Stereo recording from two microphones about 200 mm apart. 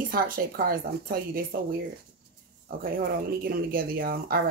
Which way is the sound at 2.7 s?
45° right (ahead or behind).